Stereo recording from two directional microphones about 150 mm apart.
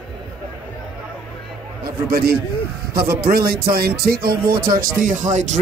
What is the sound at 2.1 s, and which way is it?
Speech, 90° right.